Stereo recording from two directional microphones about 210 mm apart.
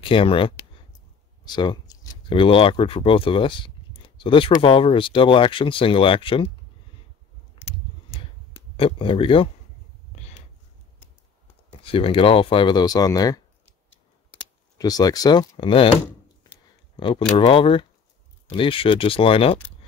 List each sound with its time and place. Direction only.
0.0 s speech: 25° left (ahead or behind)
7.6 s a sound: 25° left (ahead or behind)
8.7 s speech: 25° left (ahead or behind)
11.8 s speech: 25° left (ahead or behind)
14.8 s speech: 20° left (ahead or behind)